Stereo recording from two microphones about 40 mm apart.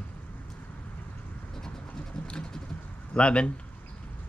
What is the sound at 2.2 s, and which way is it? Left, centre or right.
Vehicle, left.